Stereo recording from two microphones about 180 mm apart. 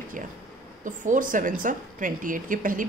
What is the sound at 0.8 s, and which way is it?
A woman's voice, 45° right (ahead or behind).